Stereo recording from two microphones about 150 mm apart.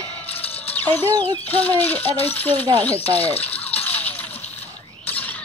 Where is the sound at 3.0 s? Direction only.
40° left (ahead or behind).